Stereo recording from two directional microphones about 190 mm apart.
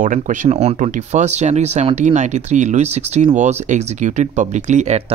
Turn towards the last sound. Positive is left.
turn(degrees=-40)  # may be behind; listen again after turning